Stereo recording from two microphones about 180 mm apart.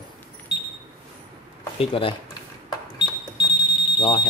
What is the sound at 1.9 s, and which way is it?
Speech, 30° left (ahead or behind).